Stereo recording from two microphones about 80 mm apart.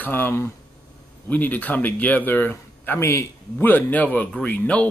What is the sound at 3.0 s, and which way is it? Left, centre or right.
Speech, left.